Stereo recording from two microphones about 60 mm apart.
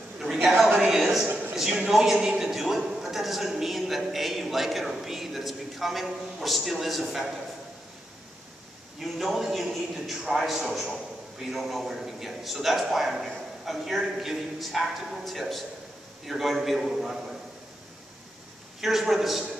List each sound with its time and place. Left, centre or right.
0.2 s a sound: centre
1.2 s a man's voice: right
1.5 s a sound: centre
1.8 s a man's voice: centre
9.0 s a man's voice: centre
18.8 s a man's voice: centre